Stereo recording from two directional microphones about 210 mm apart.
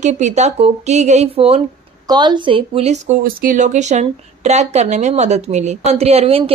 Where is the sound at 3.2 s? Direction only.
40° right (ahead or behind).